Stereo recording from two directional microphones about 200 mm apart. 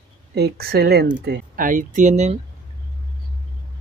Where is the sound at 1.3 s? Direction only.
45° right (ahead or behind).